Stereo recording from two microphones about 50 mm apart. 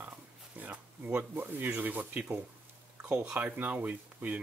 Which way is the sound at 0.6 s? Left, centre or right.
Right.